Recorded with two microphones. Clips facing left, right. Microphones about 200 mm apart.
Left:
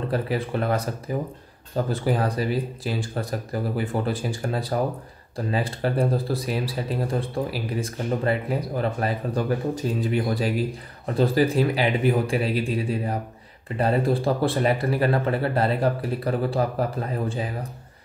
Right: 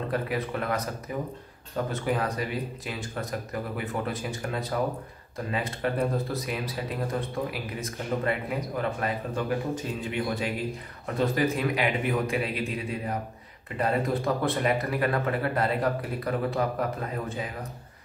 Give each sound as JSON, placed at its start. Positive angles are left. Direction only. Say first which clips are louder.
{"t": 0.1, "sound": "speech", "louder": "left 4 dB", "side_deg": 30}